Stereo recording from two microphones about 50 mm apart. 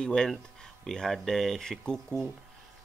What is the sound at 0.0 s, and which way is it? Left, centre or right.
Speech, centre.